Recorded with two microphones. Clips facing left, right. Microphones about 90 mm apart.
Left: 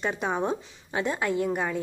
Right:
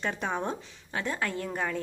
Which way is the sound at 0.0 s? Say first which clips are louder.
Left 3 dB; 10° left (ahead or behind).